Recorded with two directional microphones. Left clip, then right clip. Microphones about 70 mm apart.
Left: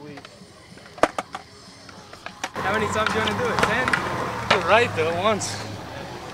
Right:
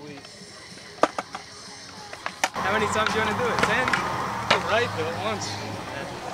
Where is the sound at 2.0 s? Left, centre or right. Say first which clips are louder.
Right 6 dB; right.